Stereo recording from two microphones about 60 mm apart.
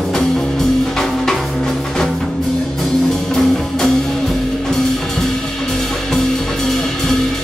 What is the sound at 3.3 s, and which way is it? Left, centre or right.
Music, centre.